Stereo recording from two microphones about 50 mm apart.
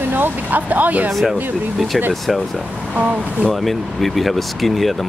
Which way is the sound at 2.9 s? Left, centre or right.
Right.